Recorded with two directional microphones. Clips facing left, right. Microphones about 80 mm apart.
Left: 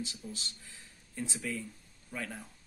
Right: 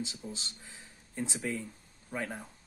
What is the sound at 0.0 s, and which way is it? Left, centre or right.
Speech, right.